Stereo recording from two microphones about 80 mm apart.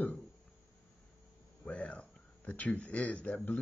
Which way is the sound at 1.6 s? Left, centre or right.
Centre.